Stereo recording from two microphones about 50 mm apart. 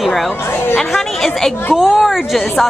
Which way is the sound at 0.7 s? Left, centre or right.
Centre.